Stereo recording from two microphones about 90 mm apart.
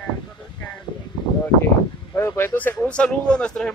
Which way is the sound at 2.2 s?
25° left (ahead or behind).